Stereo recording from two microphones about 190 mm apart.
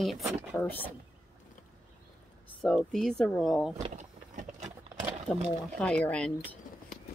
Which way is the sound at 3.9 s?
40° right (ahead or behind).